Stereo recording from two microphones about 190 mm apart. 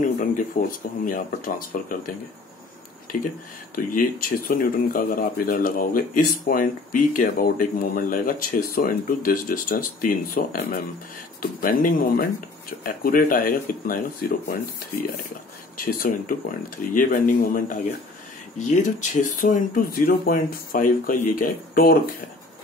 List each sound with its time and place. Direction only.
0.2 s speech: 45° left (ahead or behind)
3.7 s speech: 50° left (ahead or behind)
15.8 s speech: 45° left (ahead or behind)